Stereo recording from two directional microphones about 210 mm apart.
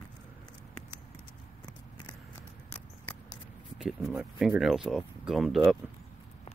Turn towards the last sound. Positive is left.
turn(degrees=0)  # may be behind; listen again after turning